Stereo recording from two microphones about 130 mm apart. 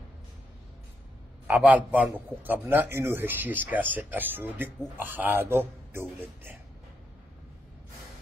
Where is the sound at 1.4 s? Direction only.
10° right (ahead or behind).